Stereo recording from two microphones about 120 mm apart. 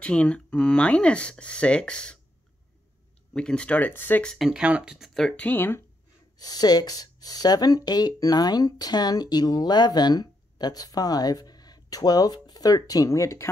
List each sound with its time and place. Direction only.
0.0 s speech: 10° left (ahead or behind)
3.3 s speech: 5° left (ahead or behind)
4.5 s speech: 10° right (ahead or behind); by 5.8 s 15° left (ahead or behind)
6.3 s speech: 35° left (ahead or behind)